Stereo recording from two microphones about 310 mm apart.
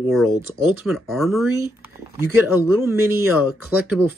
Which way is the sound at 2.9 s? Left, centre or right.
Centre.